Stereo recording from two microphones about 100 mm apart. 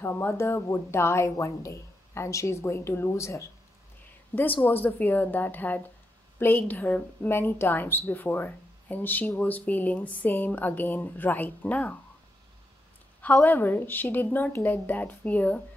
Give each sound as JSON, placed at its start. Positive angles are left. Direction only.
{"t": 0.0, "sound": "speech", "side_deg": 25}
{"t": 4.3, "sound": "speech", "side_deg": 15}
{"t": 13.2, "sound": "speech", "side_deg": 15}